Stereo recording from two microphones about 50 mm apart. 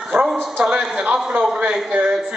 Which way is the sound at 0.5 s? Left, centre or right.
Centre.